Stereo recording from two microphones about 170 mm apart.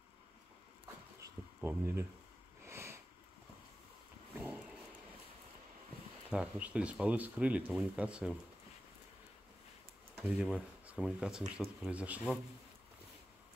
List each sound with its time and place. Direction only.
1.2 s a sound: 10° right (ahead or behind)
2.6 s sniff: 15° right (ahead or behind)
6.3 s speech: 5° right (ahead or behind)
10.2 s speech: 5° right (ahead or behind)